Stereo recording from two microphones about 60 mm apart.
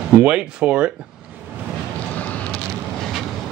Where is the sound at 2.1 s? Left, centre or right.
Left.